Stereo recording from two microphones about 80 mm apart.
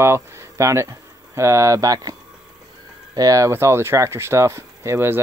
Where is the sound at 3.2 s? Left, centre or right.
Right.